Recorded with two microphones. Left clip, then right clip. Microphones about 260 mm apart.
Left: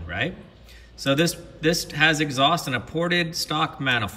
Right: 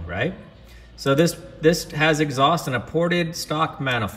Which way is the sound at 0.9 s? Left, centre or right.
Centre.